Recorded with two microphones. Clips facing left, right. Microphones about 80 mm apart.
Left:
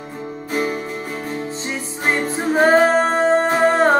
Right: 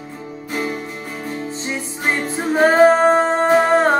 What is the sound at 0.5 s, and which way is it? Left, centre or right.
Music, centre.